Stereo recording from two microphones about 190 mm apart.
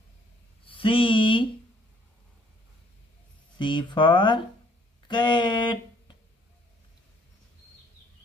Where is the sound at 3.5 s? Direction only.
25° left (ahead or behind).